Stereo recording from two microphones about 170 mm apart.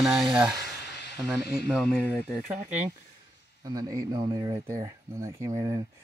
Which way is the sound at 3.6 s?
20° right (ahead or behind).